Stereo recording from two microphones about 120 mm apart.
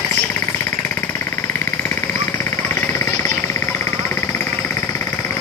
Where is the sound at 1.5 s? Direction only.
20° left (ahead or behind).